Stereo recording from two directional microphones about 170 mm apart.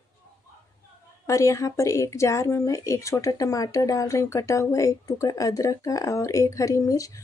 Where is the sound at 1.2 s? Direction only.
20° left (ahead or behind).